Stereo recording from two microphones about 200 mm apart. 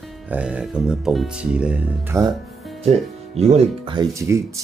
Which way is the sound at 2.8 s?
30° right (ahead or behind).